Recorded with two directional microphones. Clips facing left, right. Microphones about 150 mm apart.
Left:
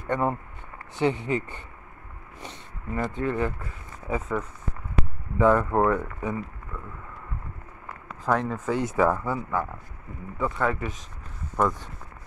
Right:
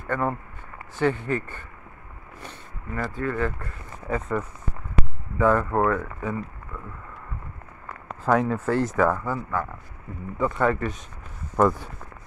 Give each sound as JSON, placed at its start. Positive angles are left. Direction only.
{"t": 0.1, "sound": "speech", "side_deg": 15}
{"t": 3.6, "sound": "speech", "side_deg": 0}
{"t": 5.4, "sound": "speech", "side_deg": 15}
{"t": 8.3, "sound": "speech", "side_deg": -5}
{"t": 8.9, "sound": "speech", "side_deg": 15}
{"t": 10.3, "sound": "speech", "side_deg": 0}
{"t": 11.5, "sound": "speech", "side_deg": -10}